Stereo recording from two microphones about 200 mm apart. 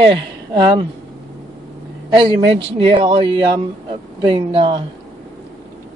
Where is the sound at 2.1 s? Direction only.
25° right (ahead or behind).